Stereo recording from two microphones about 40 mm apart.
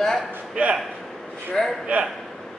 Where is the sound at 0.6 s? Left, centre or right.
Right.